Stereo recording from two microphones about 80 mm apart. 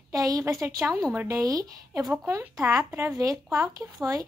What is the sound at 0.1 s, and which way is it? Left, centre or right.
A woman's voice, right.